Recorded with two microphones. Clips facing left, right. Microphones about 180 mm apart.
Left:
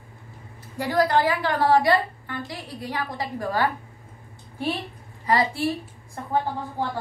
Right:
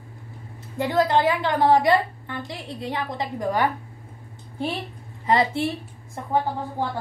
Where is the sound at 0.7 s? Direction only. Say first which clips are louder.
Right 1 dB; 20° right (ahead or behind).